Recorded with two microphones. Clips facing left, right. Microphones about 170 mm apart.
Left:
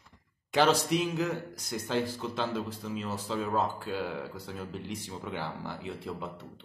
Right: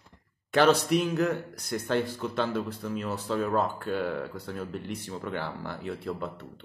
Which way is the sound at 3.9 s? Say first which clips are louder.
Right 4 dB; 55° right (ahead or behind).